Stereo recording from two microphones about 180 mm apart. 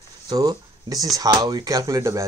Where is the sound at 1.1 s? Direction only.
20° right (ahead or behind).